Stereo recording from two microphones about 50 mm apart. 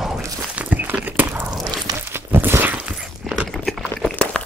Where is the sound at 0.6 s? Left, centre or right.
Right.